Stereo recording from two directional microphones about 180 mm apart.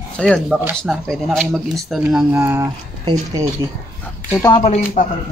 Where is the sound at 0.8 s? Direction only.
Centre (ahead or behind); by 3.5 s 20° right (ahead or behind).